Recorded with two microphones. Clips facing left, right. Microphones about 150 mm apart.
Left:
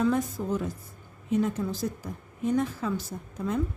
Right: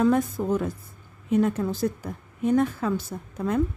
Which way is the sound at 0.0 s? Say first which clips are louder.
Right 4 dB; 55° right (ahead or behind).